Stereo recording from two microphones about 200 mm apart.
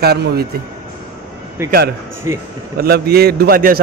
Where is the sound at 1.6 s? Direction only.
15° right (ahead or behind).